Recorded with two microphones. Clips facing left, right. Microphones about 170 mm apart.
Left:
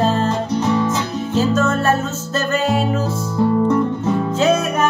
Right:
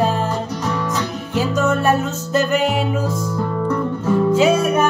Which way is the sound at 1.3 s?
15° right (ahead or behind).